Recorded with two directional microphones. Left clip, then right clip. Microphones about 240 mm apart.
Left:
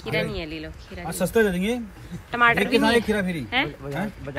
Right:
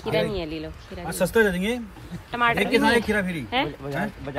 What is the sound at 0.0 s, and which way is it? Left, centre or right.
Speech, centre.